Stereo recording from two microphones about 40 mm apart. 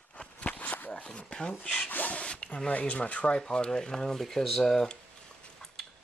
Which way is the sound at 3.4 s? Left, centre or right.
Centre.